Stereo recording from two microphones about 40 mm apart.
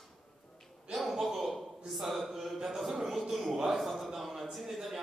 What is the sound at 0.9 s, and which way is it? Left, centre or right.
A man's voice, centre.